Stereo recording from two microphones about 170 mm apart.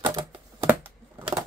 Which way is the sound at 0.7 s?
10° right (ahead or behind).